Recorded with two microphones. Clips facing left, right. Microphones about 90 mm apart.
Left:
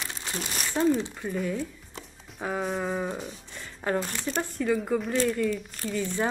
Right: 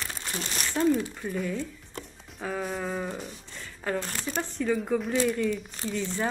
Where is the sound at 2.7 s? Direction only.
10° left (ahead or behind).